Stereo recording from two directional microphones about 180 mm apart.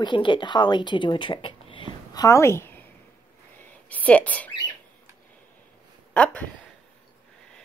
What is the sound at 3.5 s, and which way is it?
Whispering, 10° left (ahead or behind).